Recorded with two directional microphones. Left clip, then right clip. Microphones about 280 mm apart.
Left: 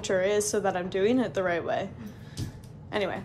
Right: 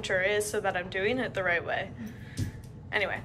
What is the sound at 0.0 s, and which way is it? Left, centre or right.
Speech, centre.